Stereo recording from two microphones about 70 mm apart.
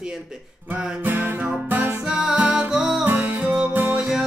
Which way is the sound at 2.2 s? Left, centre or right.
Centre.